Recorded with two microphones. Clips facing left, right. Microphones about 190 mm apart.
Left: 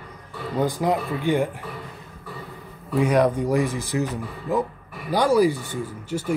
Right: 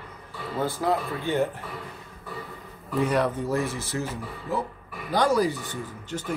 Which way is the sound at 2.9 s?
10° left (ahead or behind).